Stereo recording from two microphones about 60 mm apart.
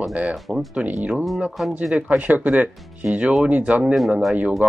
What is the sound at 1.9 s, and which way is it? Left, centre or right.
Speech, right.